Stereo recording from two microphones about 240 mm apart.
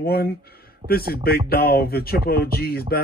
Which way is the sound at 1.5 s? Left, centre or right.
Left.